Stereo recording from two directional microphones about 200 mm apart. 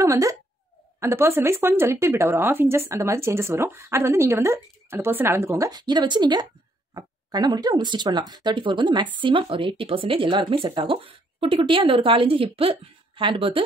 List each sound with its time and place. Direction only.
0.0 s speech: 15° right (ahead or behind)